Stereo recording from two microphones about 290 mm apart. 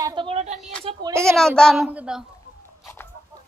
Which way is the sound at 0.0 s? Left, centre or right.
Centre.